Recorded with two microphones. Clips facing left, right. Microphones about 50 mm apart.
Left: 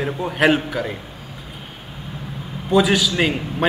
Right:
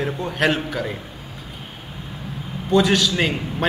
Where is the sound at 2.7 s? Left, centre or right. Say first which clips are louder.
Left 1 dB; centre.